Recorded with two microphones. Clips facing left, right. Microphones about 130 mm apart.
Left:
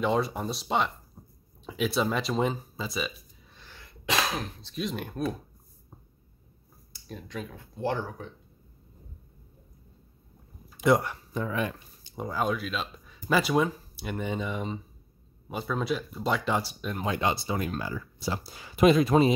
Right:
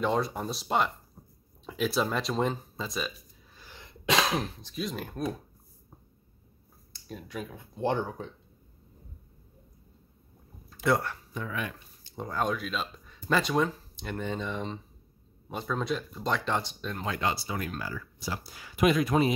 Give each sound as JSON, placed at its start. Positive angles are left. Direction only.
{"t": 0.0, "sound": "speech", "side_deg": 0}
{"t": 1.2, "sound": "a sound", "side_deg": 5}
{"t": 1.7, "sound": "speech", "side_deg": 0}
{"t": 3.5, "sound": "cough", "side_deg": -15}
{"t": 4.7, "sound": "speech", "side_deg": 0}
{"t": 7.1, "sound": "speech", "side_deg": -5}
{"t": 7.7, "sound": "speech", "side_deg": -20}
{"t": 10.7, "sound": "speech", "side_deg": 15}
{"t": 11.3, "sound": "speech", "side_deg": 35}
{"t": 12.0, "sound": "speech", "side_deg": 10}